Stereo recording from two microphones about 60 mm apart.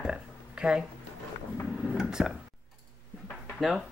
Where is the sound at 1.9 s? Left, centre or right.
Centre.